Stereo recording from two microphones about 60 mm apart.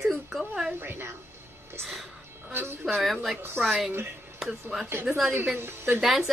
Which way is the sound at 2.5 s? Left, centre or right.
Right.